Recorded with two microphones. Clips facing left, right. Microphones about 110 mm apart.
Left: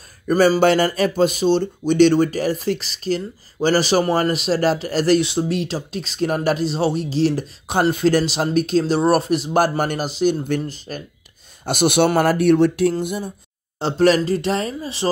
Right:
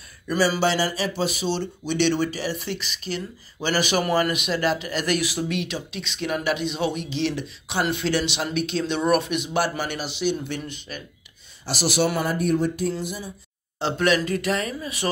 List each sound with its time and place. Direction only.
0.3 s a man's voice: 45° left (ahead or behind)
11.6 s speech: 55° left (ahead or behind); by 12.9 s 75° left (ahead or behind)
12.9 s speech: 55° left (ahead or behind)
13.7 s a man's voice: 35° left (ahead or behind)